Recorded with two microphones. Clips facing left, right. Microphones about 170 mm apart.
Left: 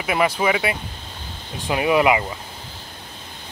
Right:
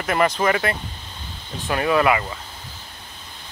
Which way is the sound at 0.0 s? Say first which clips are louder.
Even; 5° left (ahead or behind).